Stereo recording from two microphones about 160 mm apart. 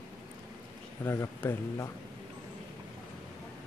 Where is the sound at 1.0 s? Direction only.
15° left (ahead or behind).